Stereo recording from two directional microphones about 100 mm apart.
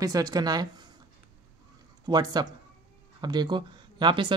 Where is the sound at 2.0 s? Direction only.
40° right (ahead or behind).